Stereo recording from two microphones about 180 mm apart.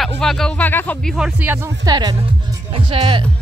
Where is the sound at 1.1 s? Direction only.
5° right (ahead or behind); by 3.3 s 30° right (ahead or behind).